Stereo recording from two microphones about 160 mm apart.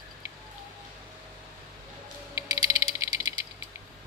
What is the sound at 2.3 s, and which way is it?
Music, 15° right (ahead or behind).